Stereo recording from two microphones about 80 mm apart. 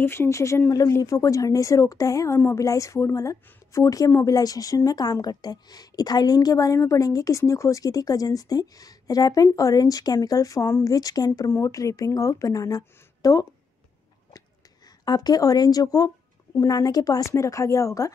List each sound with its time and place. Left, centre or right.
0.0 s a woman's voice: left
15.0 s a woman's voice: left